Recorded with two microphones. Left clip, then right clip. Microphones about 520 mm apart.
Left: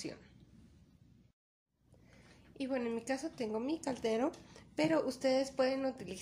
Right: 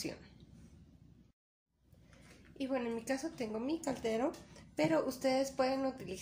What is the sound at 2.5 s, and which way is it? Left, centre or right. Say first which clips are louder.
A woman's voice: even; left.